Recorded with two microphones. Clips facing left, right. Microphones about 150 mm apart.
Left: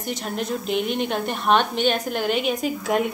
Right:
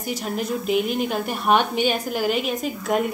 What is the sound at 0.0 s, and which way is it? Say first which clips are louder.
A woman's voice: right 1 dB; 5° right (ahead or behind).